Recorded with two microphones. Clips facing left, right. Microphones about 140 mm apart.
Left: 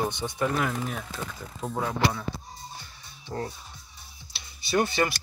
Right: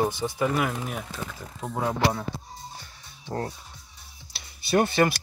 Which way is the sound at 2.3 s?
25° right (ahead or behind).